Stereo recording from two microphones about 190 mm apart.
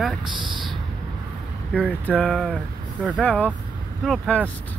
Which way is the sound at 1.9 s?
5° left (ahead or behind).